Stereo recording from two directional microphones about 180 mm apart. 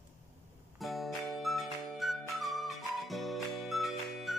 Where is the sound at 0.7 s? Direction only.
Centre (ahead or behind).